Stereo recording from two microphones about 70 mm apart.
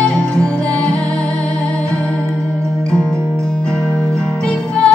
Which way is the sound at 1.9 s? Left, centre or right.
Centre.